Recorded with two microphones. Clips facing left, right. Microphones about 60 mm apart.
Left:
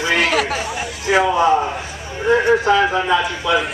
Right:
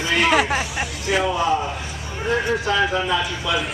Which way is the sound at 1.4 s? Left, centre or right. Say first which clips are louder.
Left 5 dB; left.